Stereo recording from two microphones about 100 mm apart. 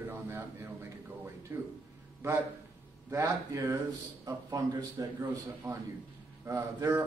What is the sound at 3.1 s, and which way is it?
A man's voice, 30° right (ahead or behind).